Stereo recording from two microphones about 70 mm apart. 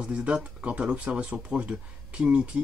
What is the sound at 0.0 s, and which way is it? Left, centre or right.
Speech, centre.